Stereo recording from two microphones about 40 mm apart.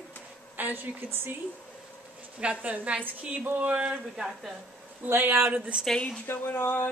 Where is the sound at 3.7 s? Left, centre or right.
Right.